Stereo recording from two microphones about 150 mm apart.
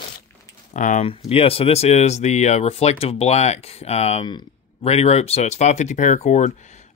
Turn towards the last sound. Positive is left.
turn(degrees=55)  # may be behind; listen again after turning